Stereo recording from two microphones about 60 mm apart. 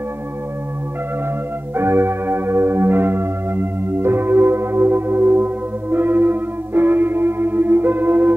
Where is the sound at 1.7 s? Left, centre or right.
Right.